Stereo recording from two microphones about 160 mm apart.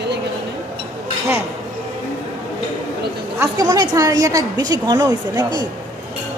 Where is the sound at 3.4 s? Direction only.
20° right (ahead or behind).